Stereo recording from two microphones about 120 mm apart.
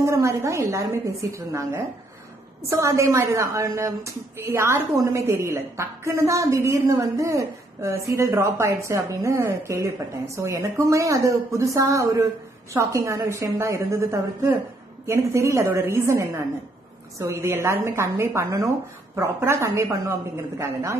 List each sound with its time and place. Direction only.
0.0 s a woman's voice: 25° right (ahead or behind)